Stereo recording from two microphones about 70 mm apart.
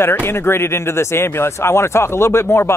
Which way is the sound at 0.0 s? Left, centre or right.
Left.